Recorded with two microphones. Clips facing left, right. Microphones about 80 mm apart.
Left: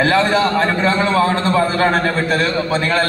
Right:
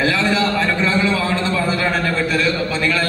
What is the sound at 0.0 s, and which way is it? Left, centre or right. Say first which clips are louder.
A man's voice: left 3 dB; left.